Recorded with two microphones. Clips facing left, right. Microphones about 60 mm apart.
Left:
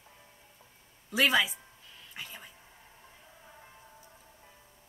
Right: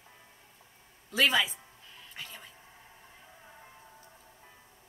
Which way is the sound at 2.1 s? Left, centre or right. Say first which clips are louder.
Left 1 dB; centre.